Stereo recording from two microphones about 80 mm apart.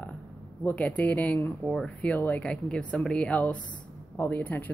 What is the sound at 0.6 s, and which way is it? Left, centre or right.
A woman's voice, left.